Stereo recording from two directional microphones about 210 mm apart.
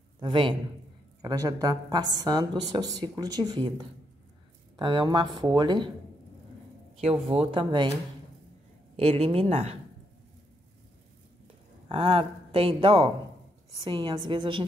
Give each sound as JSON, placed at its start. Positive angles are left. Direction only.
{"t": 0.2, "sound": "a woman's voice", "side_deg": -25}
{"t": 7.0, "sound": "a woman's voice", "side_deg": -25}
{"t": 8.9, "sound": "a woman's voice", "side_deg": -30}
{"t": 11.9, "sound": "a woman's voice", "side_deg": -25}